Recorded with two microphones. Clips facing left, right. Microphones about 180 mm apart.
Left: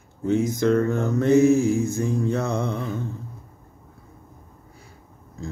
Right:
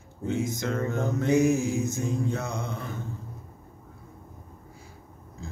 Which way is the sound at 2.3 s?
60° left (ahead or behind).